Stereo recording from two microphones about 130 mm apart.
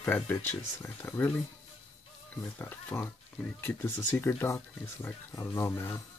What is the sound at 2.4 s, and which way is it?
Speech, 15° left (ahead or behind).